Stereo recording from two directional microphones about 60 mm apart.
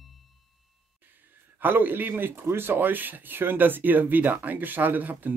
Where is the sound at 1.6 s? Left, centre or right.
Right.